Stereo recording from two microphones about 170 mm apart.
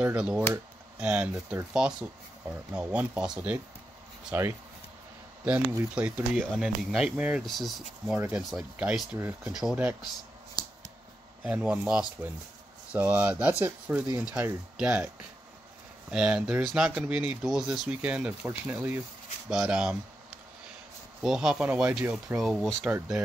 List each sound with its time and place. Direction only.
0.0 s speech: 5° right (ahead or behind)
10.6 s scissors: 25° left (ahead or behind)
11.4 s speech: 5° right (ahead or behind)
16.1 s speech: 5° right (ahead or behind)
21.2 s speech: 5° right (ahead or behind)